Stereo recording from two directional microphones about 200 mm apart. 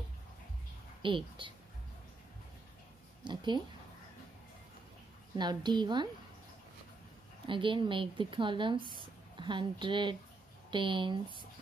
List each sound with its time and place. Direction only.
1.0 s a woman's voice: 25° right (ahead or behind)
3.3 s speech: 25° right (ahead or behind)
5.4 s a woman's voice: 20° right (ahead or behind)
7.4 s a woman's voice: 25° right (ahead or behind)